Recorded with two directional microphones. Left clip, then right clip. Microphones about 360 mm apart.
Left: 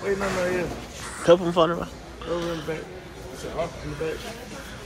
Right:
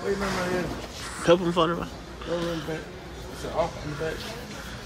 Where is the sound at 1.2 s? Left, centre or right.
Centre.